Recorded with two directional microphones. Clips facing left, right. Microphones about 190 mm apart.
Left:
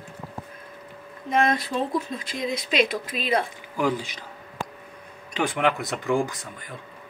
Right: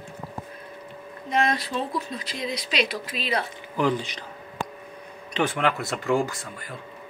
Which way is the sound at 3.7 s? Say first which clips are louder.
Right 1 dB; 10° left (ahead or behind).